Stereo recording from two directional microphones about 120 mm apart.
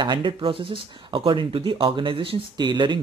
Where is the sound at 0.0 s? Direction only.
40° right (ahead or behind).